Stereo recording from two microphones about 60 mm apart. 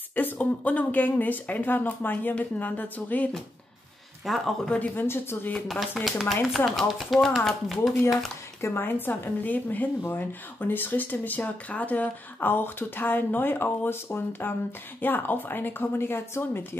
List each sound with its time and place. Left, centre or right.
0.1 s speech: left
4.2 s speech: centre
4.6 s speech: left
5.0 s speech: left
5.7 s speech: centre
8.5 s speech: left